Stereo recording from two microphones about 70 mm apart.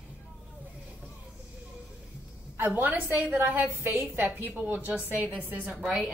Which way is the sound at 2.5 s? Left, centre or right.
Right.